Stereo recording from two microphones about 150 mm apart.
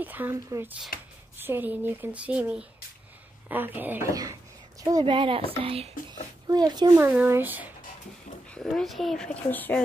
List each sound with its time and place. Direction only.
0.0 s speech: 10° right (ahead or behind)
4.1 s speech: 25° right (ahead or behind); by 5.9 s 40° right (ahead or behind)
6.5 s speech: 25° right (ahead or behind)
7.0 s speech: 15° right (ahead or behind)
8.5 s speech: 5° left (ahead or behind)